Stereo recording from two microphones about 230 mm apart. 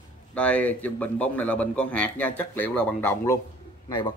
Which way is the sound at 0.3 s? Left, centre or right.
Centre.